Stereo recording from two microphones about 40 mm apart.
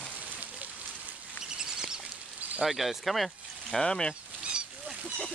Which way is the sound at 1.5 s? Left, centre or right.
Centre.